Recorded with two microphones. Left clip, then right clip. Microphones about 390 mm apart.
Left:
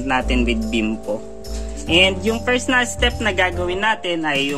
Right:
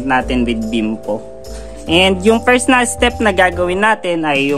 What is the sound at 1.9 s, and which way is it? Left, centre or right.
Speech, centre.